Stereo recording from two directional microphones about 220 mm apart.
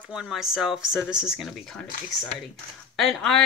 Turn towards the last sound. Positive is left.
turn(degrees=0)  # may be behind; listen again after turning